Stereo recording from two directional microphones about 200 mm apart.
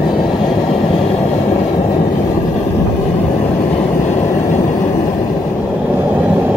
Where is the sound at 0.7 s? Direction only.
30° left (ahead or behind).